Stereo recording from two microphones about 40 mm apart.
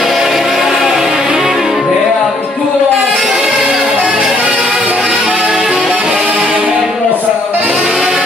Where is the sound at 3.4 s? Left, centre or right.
Centre.